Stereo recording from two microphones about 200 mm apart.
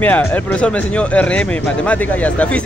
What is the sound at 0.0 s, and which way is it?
Speech, 10° left (ahead or behind).